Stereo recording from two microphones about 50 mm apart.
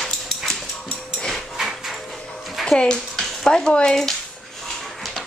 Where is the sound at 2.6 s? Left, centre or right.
Centre.